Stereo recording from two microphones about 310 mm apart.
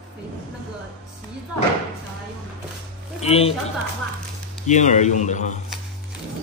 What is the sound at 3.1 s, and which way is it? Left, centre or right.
Speech, centre.